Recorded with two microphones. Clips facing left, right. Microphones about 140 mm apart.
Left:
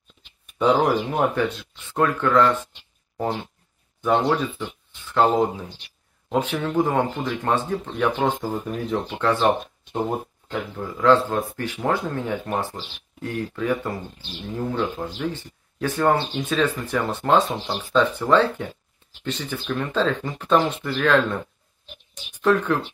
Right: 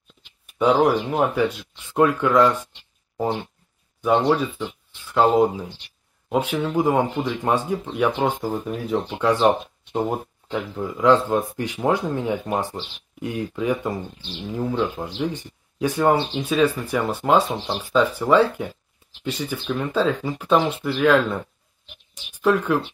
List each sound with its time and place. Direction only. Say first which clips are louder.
0.5 s speech: right 1 dB; 5° right (ahead or behind)
15.0 s speech: right 1 dB; 15° right (ahead or behind)